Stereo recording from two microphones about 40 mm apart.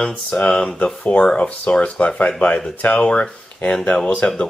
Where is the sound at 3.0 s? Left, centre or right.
Left.